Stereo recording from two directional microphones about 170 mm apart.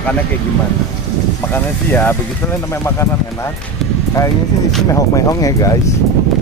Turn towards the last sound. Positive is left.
turn(degrees=20)  # may be behind; listen again after turning